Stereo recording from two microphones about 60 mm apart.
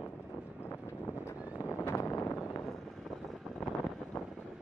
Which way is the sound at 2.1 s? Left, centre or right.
Left.